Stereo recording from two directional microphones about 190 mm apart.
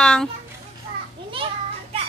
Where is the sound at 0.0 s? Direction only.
5° left (ahead or behind).